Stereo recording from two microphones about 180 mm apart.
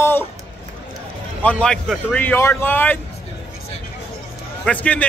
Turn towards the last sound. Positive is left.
turn(degrees=10)  # may be behind; listen again after turning